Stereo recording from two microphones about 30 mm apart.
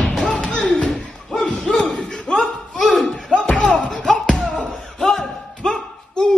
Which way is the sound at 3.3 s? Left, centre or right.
Left.